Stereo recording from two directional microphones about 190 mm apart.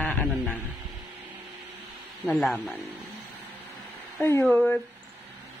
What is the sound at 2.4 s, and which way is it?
Speech, centre (ahead or behind).